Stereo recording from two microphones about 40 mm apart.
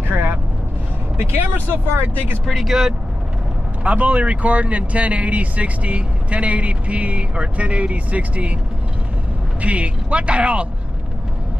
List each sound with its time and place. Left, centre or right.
0.1 s vehicle: right
1.5 s speech: right
2.4 s speech: centre
3.8 s speech: right
9.6 s speech: right